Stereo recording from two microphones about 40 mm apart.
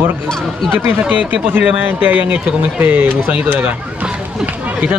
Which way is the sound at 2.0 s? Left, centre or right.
Right.